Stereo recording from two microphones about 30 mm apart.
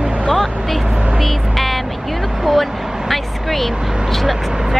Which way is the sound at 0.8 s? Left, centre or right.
Right.